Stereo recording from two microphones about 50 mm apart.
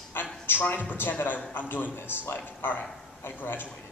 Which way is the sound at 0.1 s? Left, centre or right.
Left.